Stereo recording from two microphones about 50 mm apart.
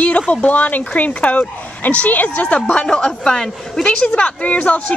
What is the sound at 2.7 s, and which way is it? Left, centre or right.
Speech, centre.